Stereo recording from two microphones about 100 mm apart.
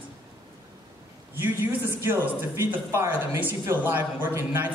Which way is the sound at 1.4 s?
20° right (ahead or behind).